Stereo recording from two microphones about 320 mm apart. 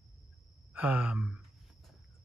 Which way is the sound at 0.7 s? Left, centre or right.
Centre.